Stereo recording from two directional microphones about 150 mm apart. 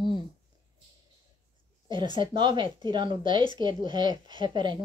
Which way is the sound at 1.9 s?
35° right (ahead or behind).